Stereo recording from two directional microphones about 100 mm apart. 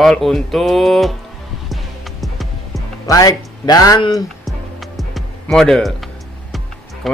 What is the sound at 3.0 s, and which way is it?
Speech, 35° left (ahead or behind).